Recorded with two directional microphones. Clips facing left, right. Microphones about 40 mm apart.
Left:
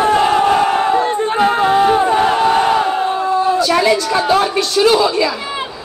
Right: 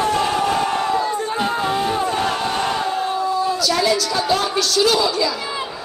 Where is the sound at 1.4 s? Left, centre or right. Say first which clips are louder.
Left 10 dB; left.